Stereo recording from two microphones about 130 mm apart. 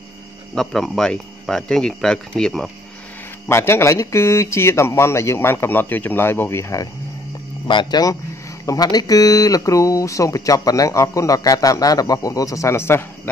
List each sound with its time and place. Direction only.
0.6 s speech: centre (ahead or behind)
3.4 s speech: 20° left (ahead or behind)
7.6 s speech: 35° left (ahead or behind); by 13.3 s 20° left (ahead or behind)